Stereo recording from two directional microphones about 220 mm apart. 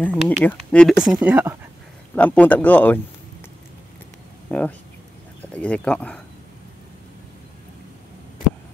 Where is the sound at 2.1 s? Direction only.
5° left (ahead or behind).